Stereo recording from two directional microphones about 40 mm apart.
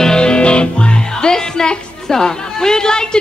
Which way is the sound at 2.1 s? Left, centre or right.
Centre.